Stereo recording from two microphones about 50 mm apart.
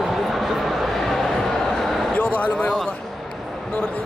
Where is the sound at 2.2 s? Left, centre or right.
Left.